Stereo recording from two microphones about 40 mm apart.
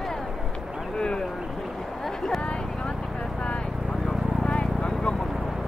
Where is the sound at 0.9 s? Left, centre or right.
Centre.